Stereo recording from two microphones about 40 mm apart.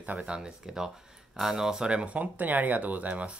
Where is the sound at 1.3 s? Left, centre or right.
Centre.